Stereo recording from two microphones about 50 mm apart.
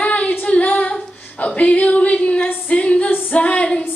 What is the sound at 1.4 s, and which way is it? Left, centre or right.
Female singing, left.